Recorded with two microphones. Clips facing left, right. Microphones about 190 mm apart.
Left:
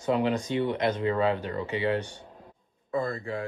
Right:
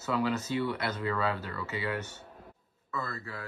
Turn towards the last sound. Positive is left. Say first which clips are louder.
# left 9 dB
turn(degrees=25)  # may be behind; listen again after turning